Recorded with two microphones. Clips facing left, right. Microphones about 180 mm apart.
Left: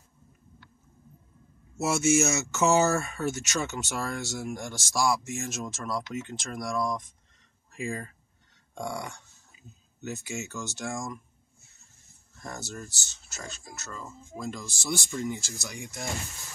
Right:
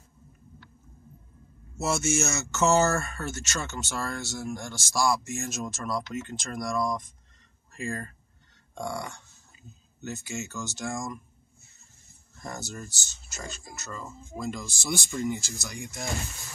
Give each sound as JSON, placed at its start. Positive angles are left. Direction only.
{"t": 1.8, "sound": "speech", "side_deg": 10}
{"t": 3.6, "sound": "speech", "side_deg": 0}
{"t": 4.0, "sound": "speech", "side_deg": 15}
{"t": 4.4, "sound": "speech", "side_deg": 5}
{"t": 5.2, "sound": "speech", "side_deg": 0}
{"t": 12.4, "sound": "speech", "side_deg": 5}